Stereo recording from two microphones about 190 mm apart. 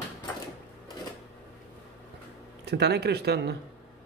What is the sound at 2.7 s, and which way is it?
Speech, 60° right (ahead or behind).